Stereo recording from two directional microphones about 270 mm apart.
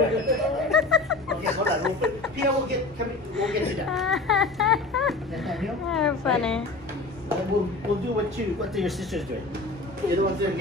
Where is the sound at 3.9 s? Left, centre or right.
Centre.